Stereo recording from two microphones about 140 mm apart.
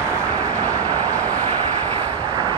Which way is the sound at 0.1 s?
25° right (ahead or behind).